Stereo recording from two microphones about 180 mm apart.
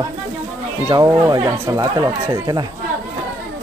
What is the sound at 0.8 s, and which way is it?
Speech, 20° right (ahead or behind).